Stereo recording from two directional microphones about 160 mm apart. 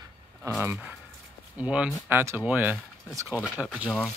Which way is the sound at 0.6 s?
10° right (ahead or behind).